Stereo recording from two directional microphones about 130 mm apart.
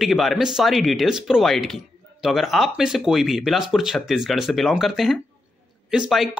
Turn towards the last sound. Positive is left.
turn(degrees=-5)  # may be behind; listen again after turning